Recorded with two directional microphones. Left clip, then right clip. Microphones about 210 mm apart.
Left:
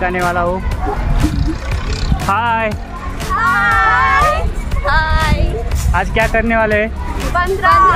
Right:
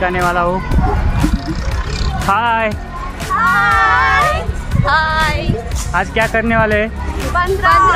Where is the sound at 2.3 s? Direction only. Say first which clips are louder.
Right 1 dB; 10° right (ahead or behind).